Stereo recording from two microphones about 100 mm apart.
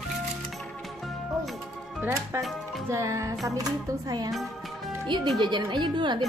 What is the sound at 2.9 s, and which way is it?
Music, 30° right (ahead or behind).